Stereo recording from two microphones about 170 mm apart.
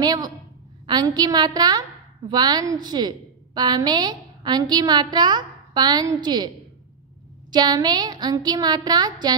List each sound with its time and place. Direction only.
0.0 s a woman's voice: 25° right (ahead or behind)
7.5 s a woman's voice: 25° right (ahead or behind)